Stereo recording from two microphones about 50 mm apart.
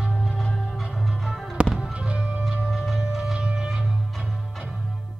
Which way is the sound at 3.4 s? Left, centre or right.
Centre.